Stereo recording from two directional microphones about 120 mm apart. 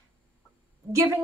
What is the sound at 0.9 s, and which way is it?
Speech, 30° right (ahead or behind).